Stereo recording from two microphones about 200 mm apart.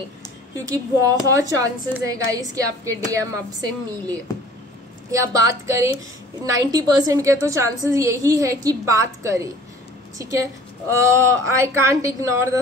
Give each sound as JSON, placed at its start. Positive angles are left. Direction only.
{"t": 0.7, "sound": "a woman's voice", "side_deg": -15}
{"t": 5.1, "sound": "a woman's voice", "side_deg": -15}